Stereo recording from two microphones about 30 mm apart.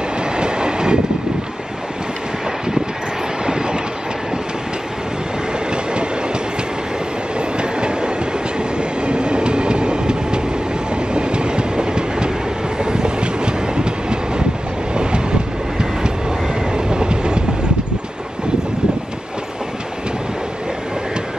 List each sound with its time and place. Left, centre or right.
0.4 s train: right
3.4 s train: right
7.3 s train: right